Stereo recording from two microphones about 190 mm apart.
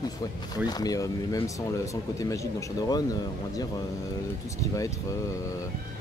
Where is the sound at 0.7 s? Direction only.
20° left (ahead or behind).